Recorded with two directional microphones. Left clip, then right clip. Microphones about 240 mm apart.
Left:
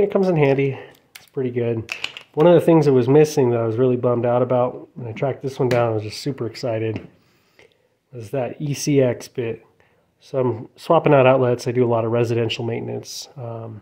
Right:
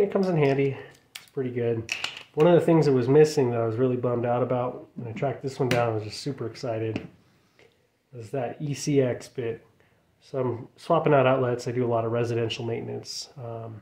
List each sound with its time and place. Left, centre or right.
0.0 s speech: left
8.2 s speech: left